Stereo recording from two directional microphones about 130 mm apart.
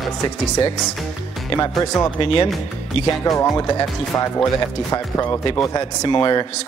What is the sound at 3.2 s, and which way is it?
Speech, 30° left (ahead or behind).